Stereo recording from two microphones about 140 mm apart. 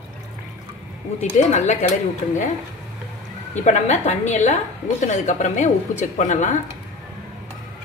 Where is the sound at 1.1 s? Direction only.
55° left (ahead or behind).